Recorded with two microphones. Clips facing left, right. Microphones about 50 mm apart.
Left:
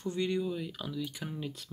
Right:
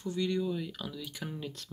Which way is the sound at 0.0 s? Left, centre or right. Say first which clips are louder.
Even; left.